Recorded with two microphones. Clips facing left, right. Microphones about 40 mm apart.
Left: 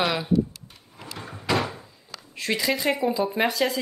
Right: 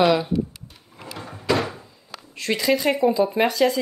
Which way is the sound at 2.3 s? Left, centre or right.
Centre.